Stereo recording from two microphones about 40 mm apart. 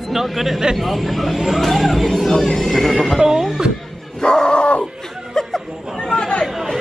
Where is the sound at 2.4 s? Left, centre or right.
Centre.